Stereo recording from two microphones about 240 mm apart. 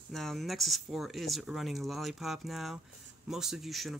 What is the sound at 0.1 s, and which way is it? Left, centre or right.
Speech, centre.